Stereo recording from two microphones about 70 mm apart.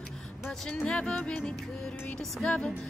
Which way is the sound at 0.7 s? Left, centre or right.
Centre.